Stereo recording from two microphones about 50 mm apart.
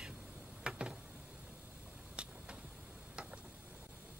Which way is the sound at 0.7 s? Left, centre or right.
Centre.